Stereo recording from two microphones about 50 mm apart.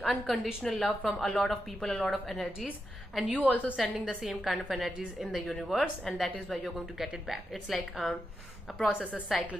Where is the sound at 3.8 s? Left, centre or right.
Centre.